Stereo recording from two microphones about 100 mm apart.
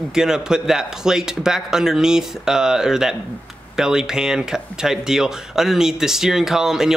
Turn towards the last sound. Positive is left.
turn(degrees=-5)  # may be behind; listen again after turning